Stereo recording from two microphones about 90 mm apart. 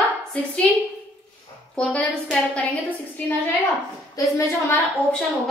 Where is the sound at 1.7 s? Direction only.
15° left (ahead or behind).